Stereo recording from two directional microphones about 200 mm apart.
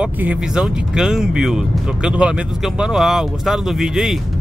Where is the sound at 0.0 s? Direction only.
5° right (ahead or behind).